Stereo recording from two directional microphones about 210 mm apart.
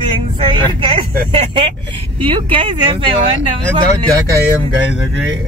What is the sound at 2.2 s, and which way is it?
Speech, 25° right (ahead or behind).